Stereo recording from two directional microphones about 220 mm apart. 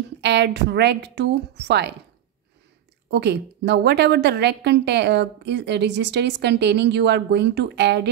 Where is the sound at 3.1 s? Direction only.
50° right (ahead or behind).